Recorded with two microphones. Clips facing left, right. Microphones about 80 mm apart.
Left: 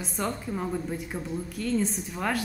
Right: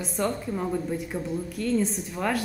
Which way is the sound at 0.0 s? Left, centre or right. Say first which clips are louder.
Right 3 dB; centre.